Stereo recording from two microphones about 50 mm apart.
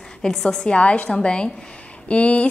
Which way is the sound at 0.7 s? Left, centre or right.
Left.